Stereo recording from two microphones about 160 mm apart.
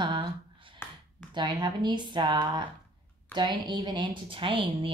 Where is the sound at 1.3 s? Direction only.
30° right (ahead or behind).